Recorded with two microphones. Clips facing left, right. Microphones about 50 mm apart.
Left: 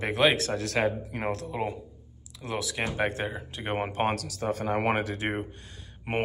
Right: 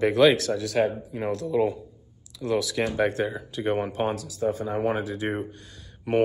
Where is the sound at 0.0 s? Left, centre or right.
Left.